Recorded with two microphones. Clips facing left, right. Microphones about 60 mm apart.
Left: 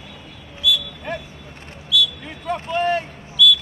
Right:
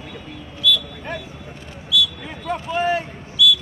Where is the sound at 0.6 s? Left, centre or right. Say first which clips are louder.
Right 1 dB; centre.